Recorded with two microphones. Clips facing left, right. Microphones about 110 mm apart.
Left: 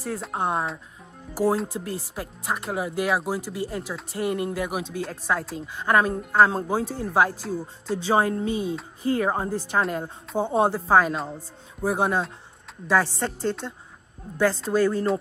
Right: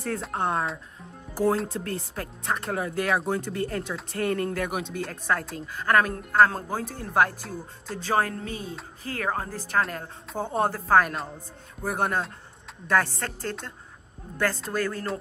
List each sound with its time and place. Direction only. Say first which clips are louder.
0.0 s speech: left 1 dB; 5° left (ahead or behind)
8.2 s speech: left 4 dB; 15° left (ahead or behind)
9.1 s speech: left 5 dB; 20° left (ahead or behind)
9.7 s a woman's voice: right 1 dB; centre (ahead or behind)